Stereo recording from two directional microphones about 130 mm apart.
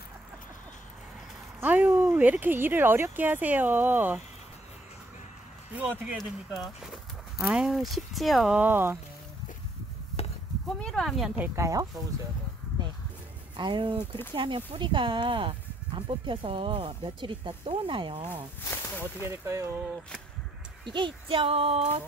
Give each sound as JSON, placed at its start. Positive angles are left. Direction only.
{"t": 1.6, "sound": "speech", "side_deg": -15}
{"t": 5.8, "sound": "speech", "side_deg": -10}
{"t": 6.1, "sound": "speech", "side_deg": 0}
{"t": 10.8, "sound": "speech", "side_deg": 5}
{"t": 11.3, "sound": "speech", "side_deg": -15}
{"t": 11.6, "sound": "speech", "side_deg": -25}
{"t": 13.6, "sound": "speech", "side_deg": -35}
{"t": 18.6, "sound": "speech", "side_deg": 20}
{"t": 19.2, "sound": "speech", "side_deg": -20}
{"t": 20.8, "sound": "a child's voice", "side_deg": -40}